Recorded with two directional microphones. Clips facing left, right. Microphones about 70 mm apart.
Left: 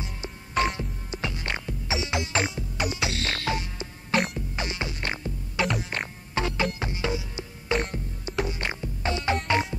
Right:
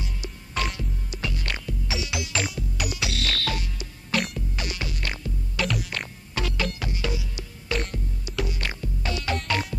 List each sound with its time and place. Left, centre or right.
0.0 s music: left